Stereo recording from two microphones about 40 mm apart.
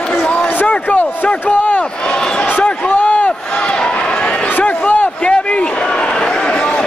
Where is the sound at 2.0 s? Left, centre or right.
Centre.